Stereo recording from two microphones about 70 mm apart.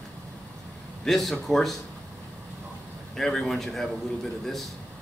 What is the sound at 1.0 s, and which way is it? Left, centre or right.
Speech, centre.